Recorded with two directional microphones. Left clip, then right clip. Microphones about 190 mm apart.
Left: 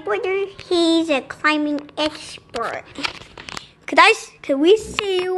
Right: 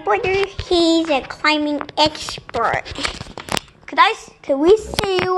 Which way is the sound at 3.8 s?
40° left (ahead or behind).